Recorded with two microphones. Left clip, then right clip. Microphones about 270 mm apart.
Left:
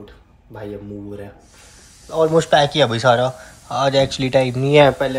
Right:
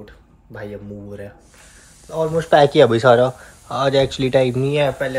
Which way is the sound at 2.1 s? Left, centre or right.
Left.